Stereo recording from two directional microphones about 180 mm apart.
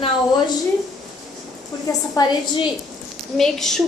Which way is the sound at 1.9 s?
20° left (ahead or behind).